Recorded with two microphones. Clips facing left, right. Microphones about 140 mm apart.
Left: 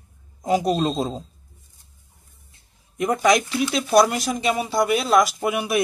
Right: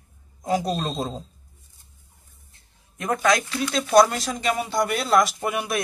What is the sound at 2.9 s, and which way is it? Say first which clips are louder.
Speech: left 3 dB; 15° left (ahead or behind).